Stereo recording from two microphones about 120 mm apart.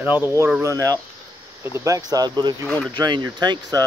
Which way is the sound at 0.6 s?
30° right (ahead or behind).